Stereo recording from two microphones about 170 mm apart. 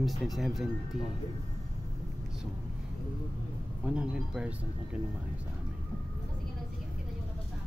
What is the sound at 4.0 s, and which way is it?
Speech, 5° right (ahead or behind).